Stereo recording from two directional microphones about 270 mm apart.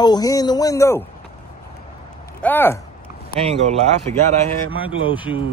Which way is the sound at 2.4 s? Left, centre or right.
Centre.